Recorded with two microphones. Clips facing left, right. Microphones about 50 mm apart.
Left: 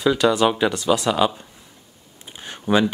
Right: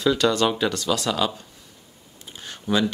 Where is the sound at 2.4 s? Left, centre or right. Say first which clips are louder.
Left 4 dB; left.